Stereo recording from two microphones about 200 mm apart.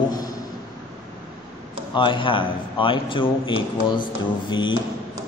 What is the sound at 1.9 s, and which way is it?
A man's voice, 25° left (ahead or behind).